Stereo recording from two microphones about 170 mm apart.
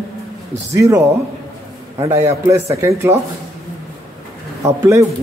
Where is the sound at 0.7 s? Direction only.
20° right (ahead or behind).